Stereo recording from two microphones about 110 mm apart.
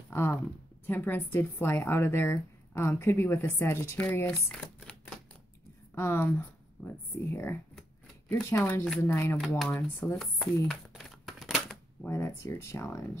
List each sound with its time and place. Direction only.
0.1 s speech: 25° left (ahead or behind)
4.5 s typewriter: 5° left (ahead or behind)
5.9 s speech: 20° left (ahead or behind)
10.1 s a sound: centre (ahead or behind)
12.1 s speech: 25° left (ahead or behind)